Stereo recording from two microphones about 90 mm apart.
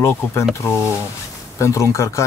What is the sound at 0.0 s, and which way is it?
Speech, 30° left (ahead or behind).